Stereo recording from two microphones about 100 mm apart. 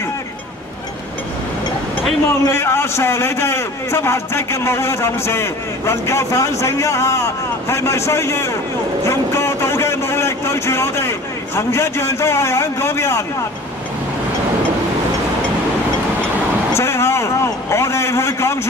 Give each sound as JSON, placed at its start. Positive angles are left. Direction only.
{"t": 2.2, "sound": "a man's voice", "side_deg": 25}
{"t": 16.7, "sound": "a man's voice", "side_deg": 25}